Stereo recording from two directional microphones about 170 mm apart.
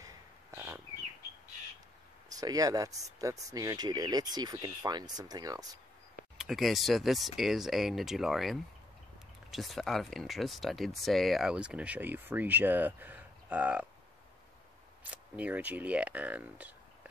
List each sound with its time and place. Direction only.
0.0 s bird: 20° right (ahead or behind)
2.2 s speech: 20° right (ahead or behind)
6.3 s speech: centre (ahead or behind)
15.0 s speech: 10° right (ahead or behind)